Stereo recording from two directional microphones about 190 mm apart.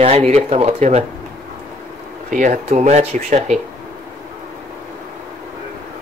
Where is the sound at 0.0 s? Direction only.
35° right (ahead or behind).